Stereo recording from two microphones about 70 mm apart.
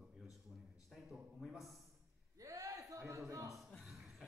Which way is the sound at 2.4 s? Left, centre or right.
Right.